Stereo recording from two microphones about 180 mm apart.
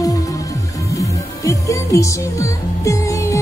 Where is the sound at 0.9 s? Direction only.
20° left (ahead or behind).